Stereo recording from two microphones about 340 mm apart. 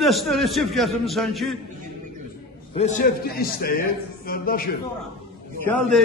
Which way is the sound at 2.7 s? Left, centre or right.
Left.